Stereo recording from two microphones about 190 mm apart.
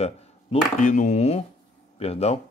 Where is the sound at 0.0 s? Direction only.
35° left (ahead or behind).